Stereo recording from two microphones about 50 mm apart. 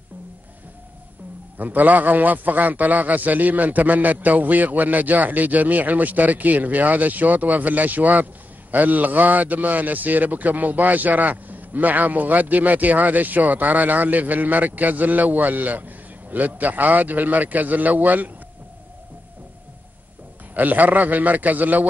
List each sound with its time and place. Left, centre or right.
1.6 s a man's voice: right
20.5 s a man's voice: right